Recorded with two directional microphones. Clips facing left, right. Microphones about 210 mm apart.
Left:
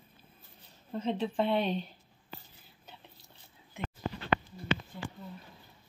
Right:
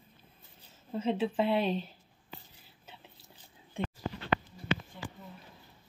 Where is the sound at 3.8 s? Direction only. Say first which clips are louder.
Right 5 dB; 30° right (ahead or behind).